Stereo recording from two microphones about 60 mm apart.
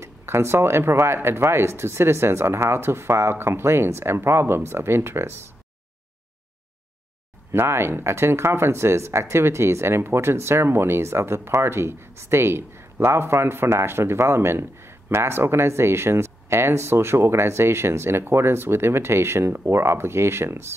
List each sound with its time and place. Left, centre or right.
0.0 s speech: right
7.5 s speech: right